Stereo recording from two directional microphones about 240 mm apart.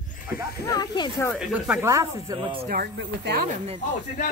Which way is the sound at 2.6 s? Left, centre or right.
Right.